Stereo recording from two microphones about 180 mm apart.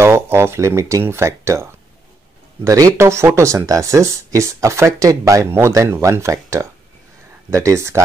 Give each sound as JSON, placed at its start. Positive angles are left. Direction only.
{"t": 0.0, "sound": "speech", "side_deg": -15}